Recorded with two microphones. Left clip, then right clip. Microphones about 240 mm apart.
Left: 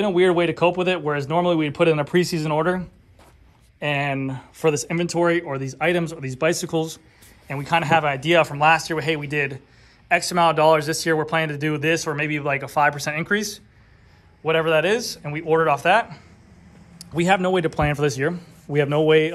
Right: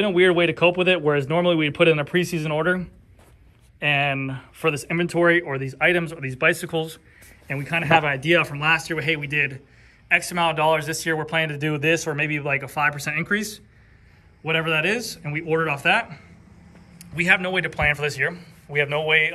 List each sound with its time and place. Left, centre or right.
0.0 s speech: centre
7.4 s speech: centre
17.0 s speech: centre
18.9 s a man's voice: left